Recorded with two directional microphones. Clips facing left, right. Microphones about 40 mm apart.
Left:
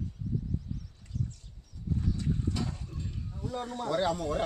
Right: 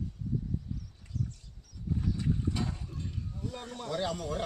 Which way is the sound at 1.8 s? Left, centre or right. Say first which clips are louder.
Even; centre.